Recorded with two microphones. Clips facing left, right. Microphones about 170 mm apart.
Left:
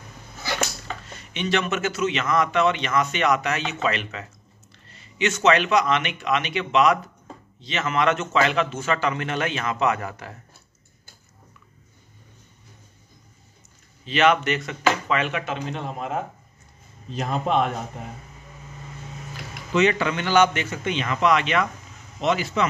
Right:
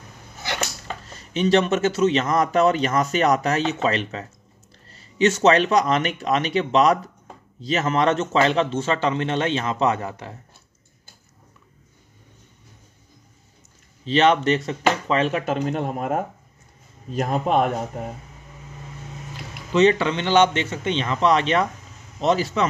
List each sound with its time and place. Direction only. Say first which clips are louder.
1.0 s a man's voice: right 8 dB; 35° right (ahead or behind)
14.0 s a man's voice: right 2 dB; 30° right (ahead or behind)
19.7 s speech: right 3 dB; 30° right (ahead or behind)